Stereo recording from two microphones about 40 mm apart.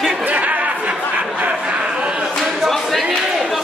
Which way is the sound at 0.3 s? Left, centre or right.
Right.